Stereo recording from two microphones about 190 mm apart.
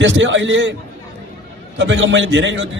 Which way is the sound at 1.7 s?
75° right (ahead or behind).